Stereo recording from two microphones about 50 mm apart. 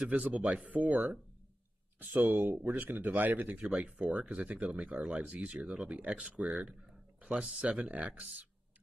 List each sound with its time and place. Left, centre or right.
0.2 s speech: right
3.5 s speech: right